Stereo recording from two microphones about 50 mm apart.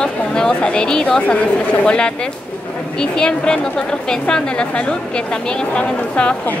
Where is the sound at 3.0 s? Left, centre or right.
Centre.